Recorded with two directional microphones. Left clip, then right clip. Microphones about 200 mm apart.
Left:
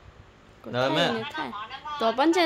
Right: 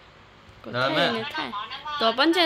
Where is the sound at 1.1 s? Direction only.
10° left (ahead or behind).